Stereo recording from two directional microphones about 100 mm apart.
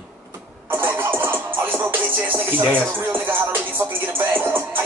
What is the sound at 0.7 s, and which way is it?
Music, 20° right (ahead or behind).